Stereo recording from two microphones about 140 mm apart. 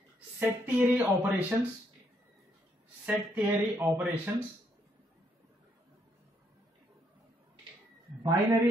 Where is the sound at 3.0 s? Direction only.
10° right (ahead or behind).